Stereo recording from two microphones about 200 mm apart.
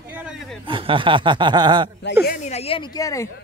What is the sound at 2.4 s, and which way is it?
Speech, 30° left (ahead or behind).